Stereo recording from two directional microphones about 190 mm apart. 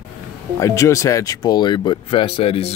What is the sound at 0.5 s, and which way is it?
Speech, 15° left (ahead or behind).